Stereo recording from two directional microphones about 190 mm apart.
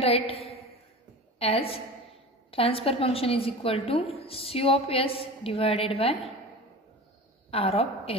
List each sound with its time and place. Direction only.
0.0 s a woman's voice: 30° left (ahead or behind)
7.5 s a woman's voice: 30° left (ahead or behind)